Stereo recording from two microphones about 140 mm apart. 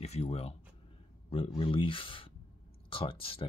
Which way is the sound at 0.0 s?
50° left (ahead or behind).